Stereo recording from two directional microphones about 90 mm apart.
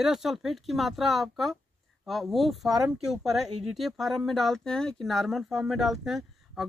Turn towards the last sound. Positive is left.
turn(degrees=0)  # may be behind; listen again after turning